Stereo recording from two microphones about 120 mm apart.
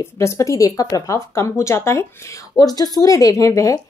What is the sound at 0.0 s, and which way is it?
Speech, 25° left (ahead or behind).